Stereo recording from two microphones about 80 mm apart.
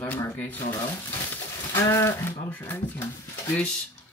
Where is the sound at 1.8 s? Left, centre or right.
Left.